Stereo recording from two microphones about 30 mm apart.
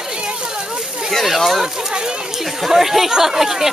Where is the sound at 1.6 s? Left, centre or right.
Right.